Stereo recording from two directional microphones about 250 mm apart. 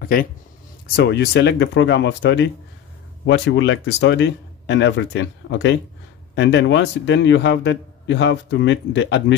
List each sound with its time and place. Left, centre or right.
0.9 s speech: left